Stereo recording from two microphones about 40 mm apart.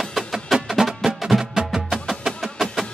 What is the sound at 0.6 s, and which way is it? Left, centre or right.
Music, centre.